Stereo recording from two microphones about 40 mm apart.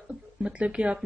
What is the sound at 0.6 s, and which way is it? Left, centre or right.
Speech, right.